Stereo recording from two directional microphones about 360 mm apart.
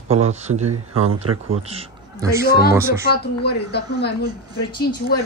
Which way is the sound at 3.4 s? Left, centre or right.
Left.